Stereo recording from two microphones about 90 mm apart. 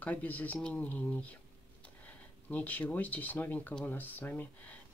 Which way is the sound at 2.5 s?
20° left (ahead or behind).